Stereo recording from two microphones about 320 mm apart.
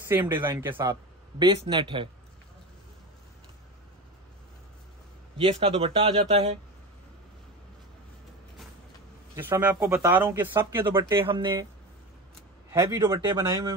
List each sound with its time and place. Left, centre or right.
0.1 s speech: centre
5.4 s speech: centre
9.3 s speech: centre
12.7 s speech: centre